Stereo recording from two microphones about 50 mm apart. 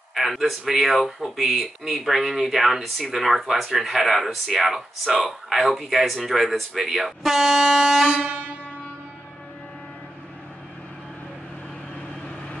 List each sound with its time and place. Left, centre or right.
0.1 s speech: centre
8.1 s air horn: right